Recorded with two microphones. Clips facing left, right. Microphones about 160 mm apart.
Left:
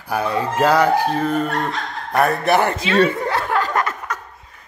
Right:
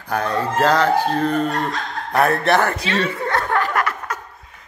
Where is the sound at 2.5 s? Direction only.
20° left (ahead or behind).